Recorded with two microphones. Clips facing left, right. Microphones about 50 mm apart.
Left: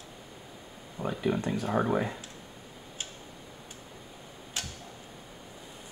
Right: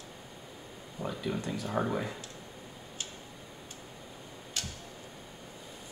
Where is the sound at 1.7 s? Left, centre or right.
Left.